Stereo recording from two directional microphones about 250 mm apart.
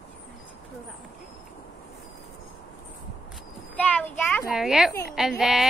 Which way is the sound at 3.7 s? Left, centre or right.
Centre.